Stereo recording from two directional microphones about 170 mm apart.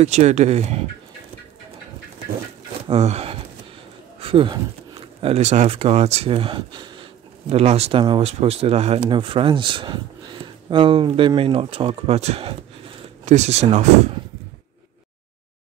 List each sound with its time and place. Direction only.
0.0 s speech: 40° right (ahead or behind)
2.9 s speech: 40° right (ahead or behind)